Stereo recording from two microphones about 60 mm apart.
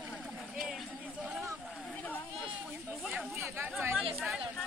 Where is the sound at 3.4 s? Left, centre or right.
Right.